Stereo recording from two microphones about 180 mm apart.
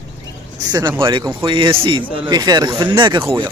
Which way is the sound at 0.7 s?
25° right (ahead or behind).